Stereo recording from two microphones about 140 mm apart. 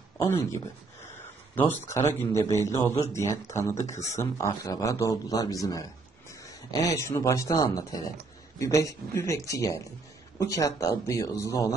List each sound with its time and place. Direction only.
0.2 s a man's voice: 20° left (ahead or behind)